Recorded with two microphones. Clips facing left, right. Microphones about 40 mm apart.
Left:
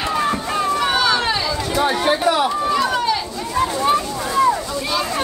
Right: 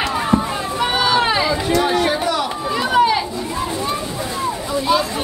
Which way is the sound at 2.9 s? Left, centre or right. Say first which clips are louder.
Right 5 dB; centre.